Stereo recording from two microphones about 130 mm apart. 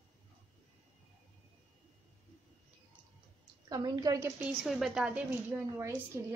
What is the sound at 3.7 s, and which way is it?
Speech, 30° right (ahead or behind).